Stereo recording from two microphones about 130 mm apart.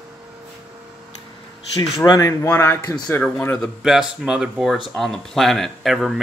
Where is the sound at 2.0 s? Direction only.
25° left (ahead or behind); by 3.6 s 10° left (ahead or behind).